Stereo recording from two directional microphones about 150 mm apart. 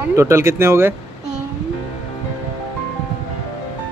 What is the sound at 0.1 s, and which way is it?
Speech, 20° right (ahead or behind).